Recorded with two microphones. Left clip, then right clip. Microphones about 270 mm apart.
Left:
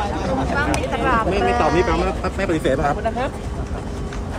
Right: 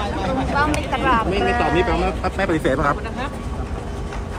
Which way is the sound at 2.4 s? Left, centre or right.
Centre.